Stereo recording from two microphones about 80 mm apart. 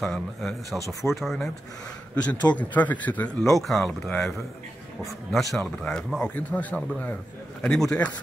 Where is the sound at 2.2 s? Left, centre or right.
Centre.